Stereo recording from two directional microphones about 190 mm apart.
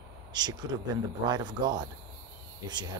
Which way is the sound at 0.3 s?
20° right (ahead or behind).